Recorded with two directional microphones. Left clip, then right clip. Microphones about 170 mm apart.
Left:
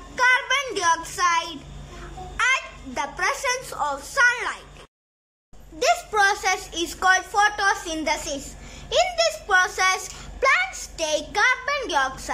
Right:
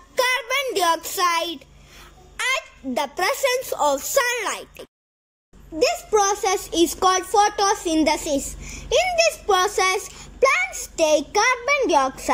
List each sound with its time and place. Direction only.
0.1 s child singing: 25° right (ahead or behind)
2.3 s a child's voice: 25° right (ahead or behind)
5.8 s a child's voice: 10° right (ahead or behind)